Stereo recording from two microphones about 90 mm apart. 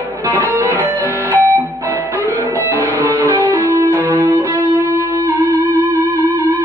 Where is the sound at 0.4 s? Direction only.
20° left (ahead or behind).